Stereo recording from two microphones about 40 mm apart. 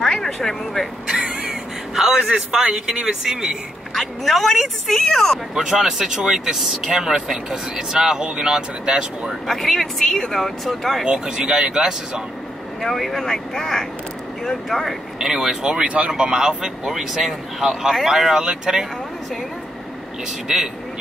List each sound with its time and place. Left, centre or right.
0.0 s vehicle: centre
1.0 s vehicle: centre
1.5 s speech: centre
3.9 s speech: centre
5.5 s speech: centre
9.5 s speech: centre
11.1 s speech: centre
12.8 s speech: centre
15.1 s speech: centre
20.4 s speech: centre